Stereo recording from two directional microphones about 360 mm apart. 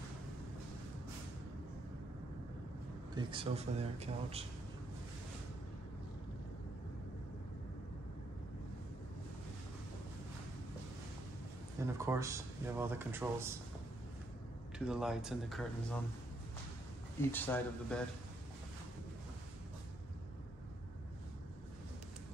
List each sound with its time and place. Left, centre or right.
3.2 s speech: centre
11.8 s speech: centre
14.9 s speech: centre
17.2 s speech: centre